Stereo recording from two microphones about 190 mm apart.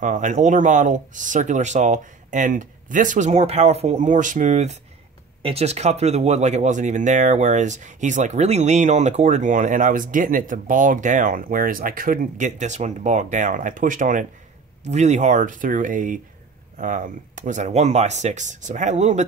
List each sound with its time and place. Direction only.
0.0 s speech: 40° right (ahead or behind)